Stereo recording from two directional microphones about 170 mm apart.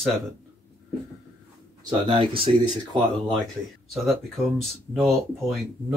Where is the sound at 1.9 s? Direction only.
30° right (ahead or behind).